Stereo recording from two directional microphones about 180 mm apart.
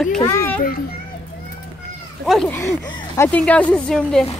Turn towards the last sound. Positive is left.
turn(degrees=5)  # may be behind; listen again after turning